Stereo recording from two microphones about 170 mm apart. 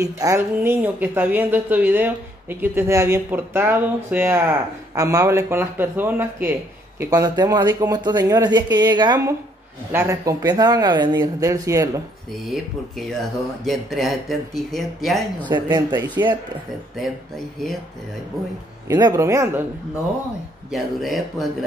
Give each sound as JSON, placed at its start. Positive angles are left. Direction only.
{"t": 0.0, "sound": "speech", "side_deg": -20}
{"t": 13.0, "sound": "speech", "side_deg": 0}
{"t": 15.4, "sound": "speech", "side_deg": -25}
{"t": 18.9, "sound": "speech", "side_deg": -20}
{"t": 20.7, "sound": "speech", "side_deg": 0}